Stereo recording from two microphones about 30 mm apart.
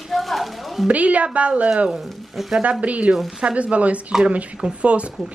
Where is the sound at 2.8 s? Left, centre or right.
Right.